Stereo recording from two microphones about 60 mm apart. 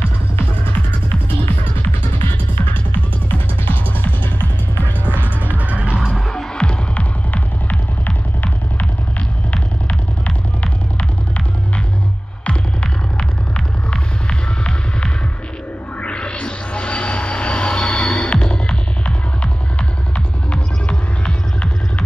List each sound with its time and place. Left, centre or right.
1.0 s music: left
2.5 s music: left
5.5 s music: right
5.9 s music: centre
9.5 s music: left
12.4 s music: centre
14.6 s music: centre